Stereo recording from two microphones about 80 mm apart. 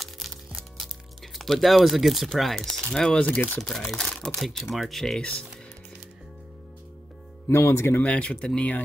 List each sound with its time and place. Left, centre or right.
0.0 s speech: centre
7.4 s speech: left
8.0 s speech: centre